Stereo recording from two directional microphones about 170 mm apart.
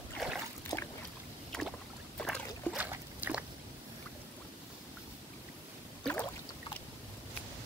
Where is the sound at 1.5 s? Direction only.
5° left (ahead or behind).